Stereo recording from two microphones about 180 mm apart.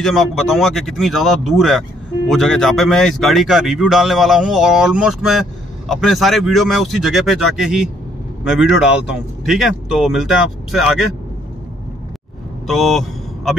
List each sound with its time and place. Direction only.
0.0 s speech: centre (ahead or behind)
12.6 s speech: centre (ahead or behind)